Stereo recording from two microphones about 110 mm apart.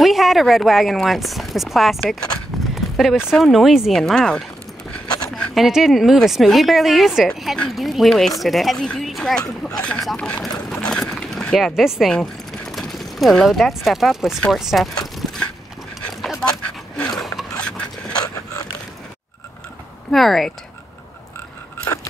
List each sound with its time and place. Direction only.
0.0 s speech: centre (ahead or behind)
2.7 s horse: centre (ahead or behind)
3.3 s speech: centre (ahead or behind)
10.8 s a sound: 5° left (ahead or behind)
14.4 s speech: 5° right (ahead or behind)
15.2 s a sound: 5° right (ahead or behind)
18.1 s mechanisms: 35° left (ahead or behind)
20.1 s speech: centre (ahead or behind)